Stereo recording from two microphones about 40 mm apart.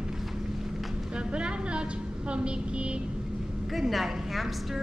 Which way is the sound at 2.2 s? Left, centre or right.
Right.